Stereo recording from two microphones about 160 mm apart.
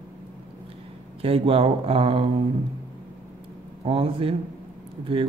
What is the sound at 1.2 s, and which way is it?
Speech, 35° right (ahead or behind).